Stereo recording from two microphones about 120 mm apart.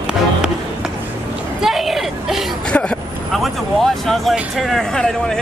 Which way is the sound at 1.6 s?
Centre (ahead or behind).